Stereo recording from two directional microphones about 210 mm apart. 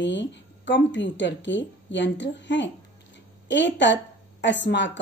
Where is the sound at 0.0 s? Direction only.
55° left (ahead or behind).